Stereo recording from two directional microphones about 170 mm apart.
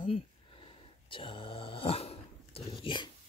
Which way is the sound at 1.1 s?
30° left (ahead or behind).